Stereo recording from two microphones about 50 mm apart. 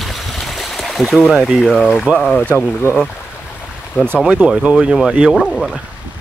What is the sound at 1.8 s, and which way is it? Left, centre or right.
Speech, centre.